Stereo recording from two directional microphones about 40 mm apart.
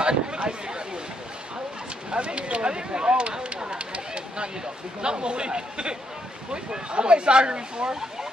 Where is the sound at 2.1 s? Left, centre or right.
Right.